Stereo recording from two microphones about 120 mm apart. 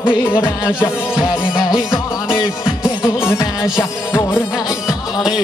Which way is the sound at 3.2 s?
20° left (ahead or behind).